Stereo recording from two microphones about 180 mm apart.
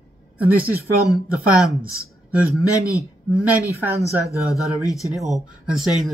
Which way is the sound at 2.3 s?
10° right (ahead or behind).